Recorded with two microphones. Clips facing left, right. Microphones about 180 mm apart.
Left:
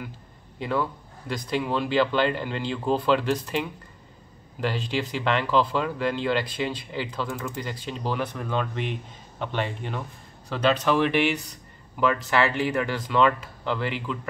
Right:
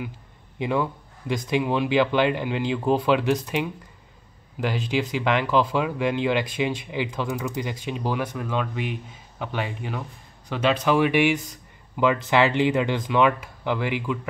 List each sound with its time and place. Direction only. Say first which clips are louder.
0.6 s speech: right 2 dB; 15° right (ahead or behind)